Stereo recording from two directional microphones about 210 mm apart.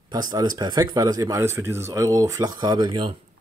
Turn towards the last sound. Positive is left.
turn(degrees=-20)  # may be behind; listen again after turning